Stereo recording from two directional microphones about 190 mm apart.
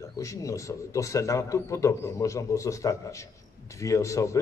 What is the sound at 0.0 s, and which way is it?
A man's voice, 15° left (ahead or behind).